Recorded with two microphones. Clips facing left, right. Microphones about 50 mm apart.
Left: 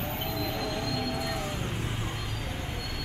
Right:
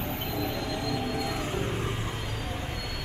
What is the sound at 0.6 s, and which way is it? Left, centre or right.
Train, centre.